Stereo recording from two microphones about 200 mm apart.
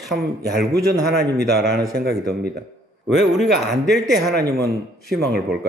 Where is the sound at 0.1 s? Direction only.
55° right (ahead or behind).